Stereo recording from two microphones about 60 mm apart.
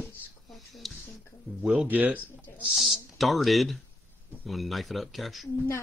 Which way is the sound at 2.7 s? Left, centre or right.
Centre.